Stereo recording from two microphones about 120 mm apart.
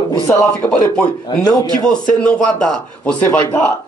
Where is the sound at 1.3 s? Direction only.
35° left (ahead or behind).